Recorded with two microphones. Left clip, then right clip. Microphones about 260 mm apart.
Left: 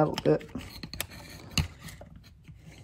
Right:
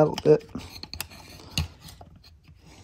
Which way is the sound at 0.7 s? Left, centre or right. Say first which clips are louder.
Right 1 dB; centre.